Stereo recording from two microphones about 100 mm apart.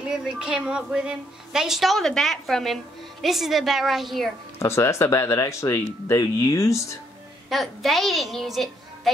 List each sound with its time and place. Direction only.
0.0 s a woman's voice: 5° right (ahead or behind)
4.6 s speech: 25° left (ahead or behind)
7.4 s a child's voice: centre (ahead or behind)